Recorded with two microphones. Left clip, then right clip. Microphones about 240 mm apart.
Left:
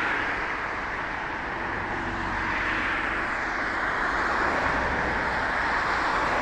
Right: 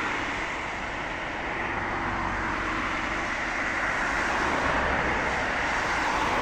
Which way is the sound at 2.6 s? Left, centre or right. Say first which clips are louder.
Left 2 dB; right.